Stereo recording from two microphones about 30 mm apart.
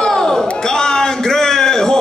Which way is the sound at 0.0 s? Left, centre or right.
Centre.